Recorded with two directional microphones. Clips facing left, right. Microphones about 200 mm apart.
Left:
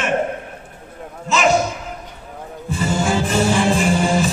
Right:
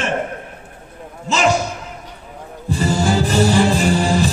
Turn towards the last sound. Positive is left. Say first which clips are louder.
# right 1 dB
turn(degrees=-35)  # may be behind; listen again after turning